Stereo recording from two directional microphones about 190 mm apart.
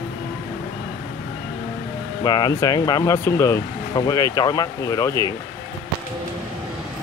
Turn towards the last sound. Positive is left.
turn(degrees=20)  # may be behind; listen again after turning